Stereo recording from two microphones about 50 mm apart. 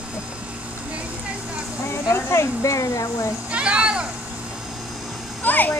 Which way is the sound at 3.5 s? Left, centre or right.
Right.